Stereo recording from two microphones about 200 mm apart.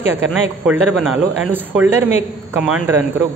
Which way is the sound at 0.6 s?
Centre (ahead or behind).